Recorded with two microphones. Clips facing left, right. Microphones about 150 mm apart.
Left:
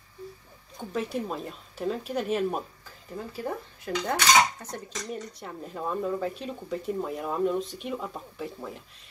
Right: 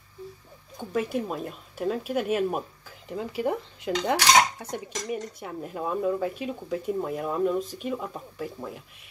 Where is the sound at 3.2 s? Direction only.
15° right (ahead or behind).